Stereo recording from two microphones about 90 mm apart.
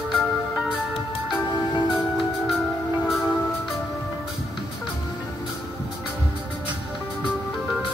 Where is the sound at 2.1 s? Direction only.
Centre (ahead or behind).